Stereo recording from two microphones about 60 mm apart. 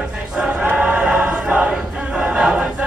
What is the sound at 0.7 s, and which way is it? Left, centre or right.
Choir, centre.